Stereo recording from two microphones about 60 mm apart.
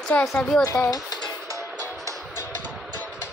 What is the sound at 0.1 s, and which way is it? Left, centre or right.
Speech, left.